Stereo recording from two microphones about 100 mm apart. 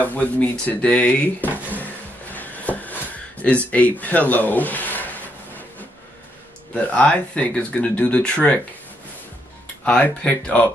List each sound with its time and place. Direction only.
0.0 s speech: 15° left (ahead or behind)
2.3 s a sound: 15° left (ahead or behind)
3.7 s speech: 15° left (ahead or behind)
6.7 s speech: 15° left (ahead or behind)
9.8 s speech: 10° left (ahead or behind)